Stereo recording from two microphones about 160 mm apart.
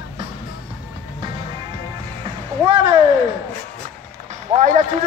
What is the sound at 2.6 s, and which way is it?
Speech, 35° right (ahead or behind).